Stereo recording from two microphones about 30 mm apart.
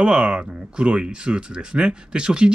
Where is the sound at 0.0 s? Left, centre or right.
Right.